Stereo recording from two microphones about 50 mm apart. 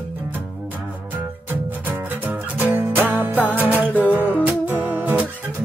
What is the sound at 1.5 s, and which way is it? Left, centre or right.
Music, right.